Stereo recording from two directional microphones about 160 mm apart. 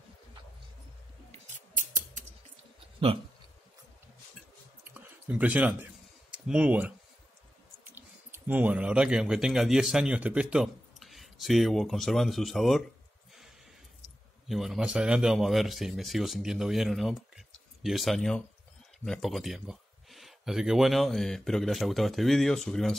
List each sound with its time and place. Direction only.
1.5 s scissors: 50° right (ahead or behind)
4.8 s a sound: 10° right (ahead or behind)
6.3 s speech: 5° right (ahead or behind)
14.5 s speech: centre (ahead or behind)